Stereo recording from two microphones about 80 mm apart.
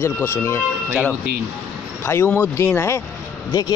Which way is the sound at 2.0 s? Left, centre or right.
Left.